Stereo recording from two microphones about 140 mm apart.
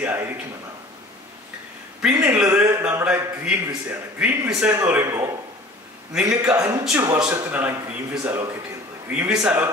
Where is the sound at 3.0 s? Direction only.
10° right (ahead or behind).